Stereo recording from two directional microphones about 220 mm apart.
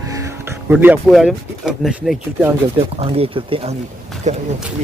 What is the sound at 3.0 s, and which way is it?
Speech, 25° right (ahead or behind).